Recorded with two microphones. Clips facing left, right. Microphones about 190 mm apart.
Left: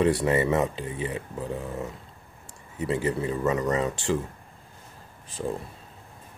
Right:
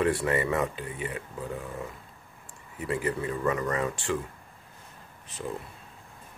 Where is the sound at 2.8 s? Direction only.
25° left (ahead or behind).